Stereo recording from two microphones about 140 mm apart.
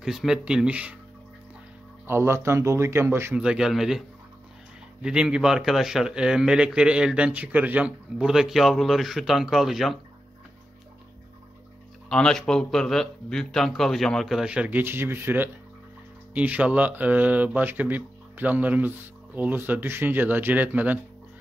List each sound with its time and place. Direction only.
0.0 s a man's voice: 5° right (ahead or behind)
2.0 s speech: 20° right (ahead or behind)
3.3 s a man's voice: 5° right (ahead or behind)
5.0 s a man's voice: 5° right (ahead or behind)
12.1 s a man's voice: 5° left (ahead or behind); by 21.0 s 10° right (ahead or behind)